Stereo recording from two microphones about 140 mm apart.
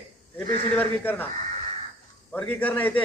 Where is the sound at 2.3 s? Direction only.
10° left (ahead or behind).